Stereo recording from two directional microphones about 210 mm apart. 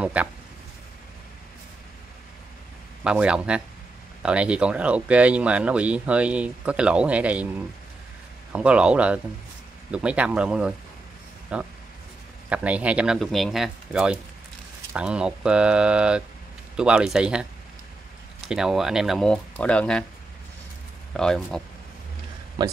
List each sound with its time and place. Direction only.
0.0 s speech: 5° right (ahead or behind)
3.0 s speech: 5° right (ahead or behind)
18.5 s speech: 5° right (ahead or behind)
21.1 s speech: centre (ahead or behind)
22.6 s speech: 20° right (ahead or behind)